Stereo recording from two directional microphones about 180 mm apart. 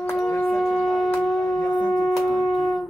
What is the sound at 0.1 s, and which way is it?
Shofar, 5° left (ahead or behind).